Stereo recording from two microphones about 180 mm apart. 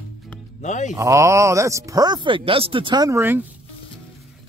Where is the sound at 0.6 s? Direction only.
40° left (ahead or behind).